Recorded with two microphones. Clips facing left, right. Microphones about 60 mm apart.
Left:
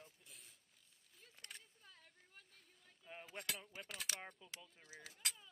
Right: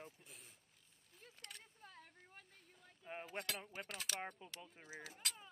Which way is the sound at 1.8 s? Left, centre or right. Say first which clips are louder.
Right 6 dB; right.